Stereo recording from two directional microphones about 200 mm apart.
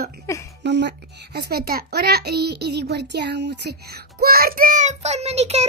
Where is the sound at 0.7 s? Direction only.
60° right (ahead or behind).